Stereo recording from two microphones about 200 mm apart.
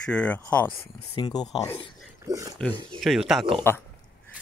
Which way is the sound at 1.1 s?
20° left (ahead or behind).